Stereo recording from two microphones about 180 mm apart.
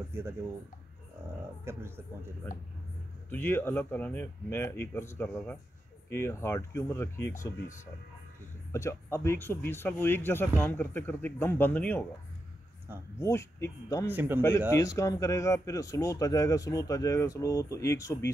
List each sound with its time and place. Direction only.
1.6 s speech: 15° right (ahead or behind)
3.3 s speech: 10° left (ahead or behind)
12.9 s speech: 15° right (ahead or behind)
13.2 s speech: 15° left (ahead or behind)
14.0 s speech: 10° right (ahead or behind)
14.7 s speech: 15° left (ahead or behind)